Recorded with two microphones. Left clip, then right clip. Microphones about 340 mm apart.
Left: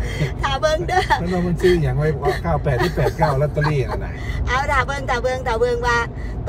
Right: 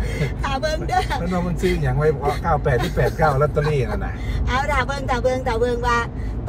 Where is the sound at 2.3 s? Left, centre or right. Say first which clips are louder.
Right 1 dB; left.